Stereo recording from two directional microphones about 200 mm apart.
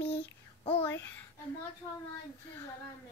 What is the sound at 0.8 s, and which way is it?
Child singing, 10° left (ahead or behind).